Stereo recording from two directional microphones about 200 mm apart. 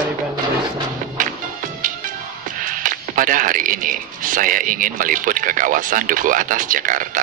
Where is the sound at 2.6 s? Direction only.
40° right (ahead or behind).